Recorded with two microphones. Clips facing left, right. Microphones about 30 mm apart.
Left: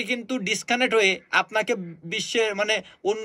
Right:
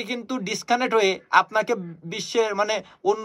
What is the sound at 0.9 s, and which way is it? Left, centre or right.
Speech, centre.